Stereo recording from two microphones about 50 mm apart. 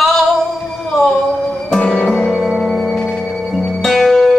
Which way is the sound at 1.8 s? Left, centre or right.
Centre.